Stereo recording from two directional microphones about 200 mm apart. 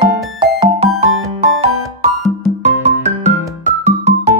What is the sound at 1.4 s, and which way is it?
Music, 30° right (ahead or behind).